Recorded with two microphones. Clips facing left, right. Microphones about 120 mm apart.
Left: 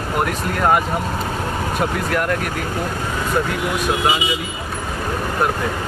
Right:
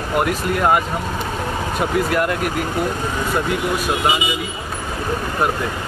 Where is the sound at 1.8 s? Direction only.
5° right (ahead or behind).